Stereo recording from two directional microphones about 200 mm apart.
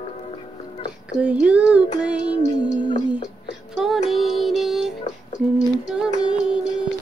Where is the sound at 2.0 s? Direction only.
5° right (ahead or behind).